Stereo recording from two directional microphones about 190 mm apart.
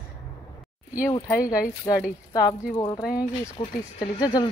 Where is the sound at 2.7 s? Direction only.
15° left (ahead or behind).